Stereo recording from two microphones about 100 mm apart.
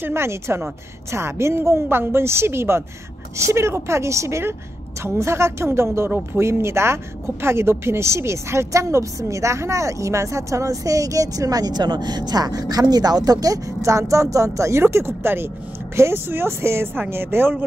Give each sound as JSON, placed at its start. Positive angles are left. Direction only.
{"t": 0.0, "sound": "a woman's voice", "side_deg": -25}